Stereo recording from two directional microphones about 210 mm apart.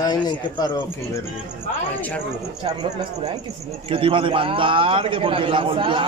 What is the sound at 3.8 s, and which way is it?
A man's voice, 25° right (ahead or behind).